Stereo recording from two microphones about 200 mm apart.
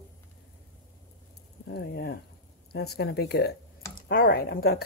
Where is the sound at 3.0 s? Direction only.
55° left (ahead or behind).